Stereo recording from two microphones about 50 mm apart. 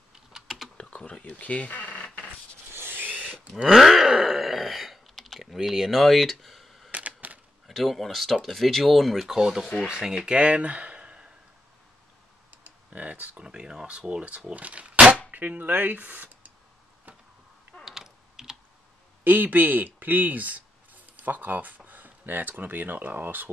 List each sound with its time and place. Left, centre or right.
0.3 s typing: centre
0.7 s computer keyboard: left
1.2 s speech: left
2.7 s rub: right
3.1 s a sound: right
3.6 s groan: centre
6.9 s camera: right
7.6 s speech: centre; by 11.3 s right
12.6 s typing: right
13.4 s speech: centre; by 16.5 s right
17.8 s typing: centre
19.2 s speech: right